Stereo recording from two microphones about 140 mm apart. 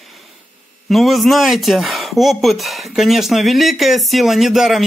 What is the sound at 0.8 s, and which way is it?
Speech, centre (ahead or behind).